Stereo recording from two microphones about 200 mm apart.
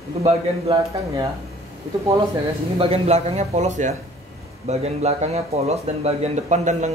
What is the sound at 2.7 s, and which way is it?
Speech, 30° right (ahead or behind).